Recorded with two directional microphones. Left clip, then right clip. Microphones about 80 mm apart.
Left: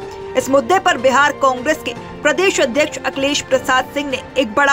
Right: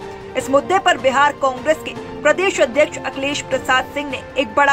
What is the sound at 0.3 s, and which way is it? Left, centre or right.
Speech, left.